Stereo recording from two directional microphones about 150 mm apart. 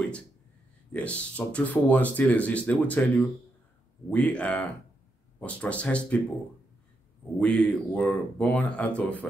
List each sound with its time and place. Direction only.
0.9 s speech: 10° left (ahead or behind)
7.3 s speech: 5° left (ahead or behind)